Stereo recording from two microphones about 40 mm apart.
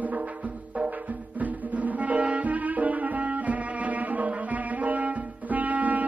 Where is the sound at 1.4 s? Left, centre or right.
Right.